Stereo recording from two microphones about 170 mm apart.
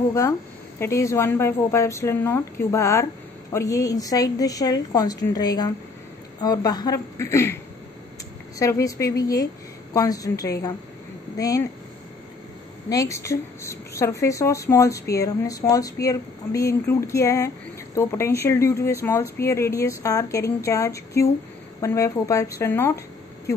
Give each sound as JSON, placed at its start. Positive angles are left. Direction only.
{"t": 0.1, "sound": "a woman's voice", "side_deg": 15}
{"t": 8.5, "sound": "a woman's voice", "side_deg": 20}
{"t": 12.9, "sound": "speech", "side_deg": 20}